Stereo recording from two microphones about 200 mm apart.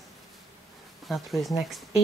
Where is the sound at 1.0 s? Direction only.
Centre (ahead or behind).